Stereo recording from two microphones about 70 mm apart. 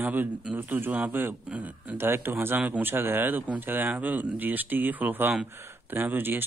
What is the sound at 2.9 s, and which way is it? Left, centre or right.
Speech, right.